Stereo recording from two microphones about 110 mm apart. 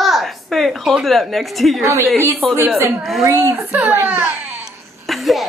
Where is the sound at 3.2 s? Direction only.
25° right (ahead or behind).